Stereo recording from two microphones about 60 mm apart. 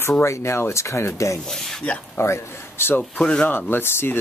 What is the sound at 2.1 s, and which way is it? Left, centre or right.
Speech, left.